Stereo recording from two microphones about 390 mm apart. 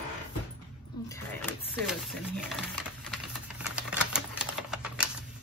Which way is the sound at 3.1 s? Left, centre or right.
Centre.